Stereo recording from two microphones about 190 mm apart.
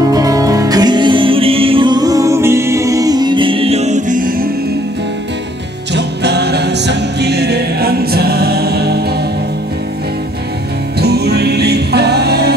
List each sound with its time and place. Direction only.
0.0 s music: 20° right (ahead or behind); by 4.5 s 45° right (ahead or behind)
5.9 s music: 60° right (ahead or behind)
11.0 s music: 60° right (ahead or behind)